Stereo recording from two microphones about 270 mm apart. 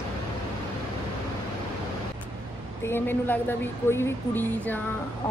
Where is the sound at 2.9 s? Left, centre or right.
Centre.